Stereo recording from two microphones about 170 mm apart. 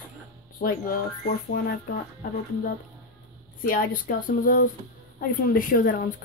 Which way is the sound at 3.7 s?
55° left (ahead or behind).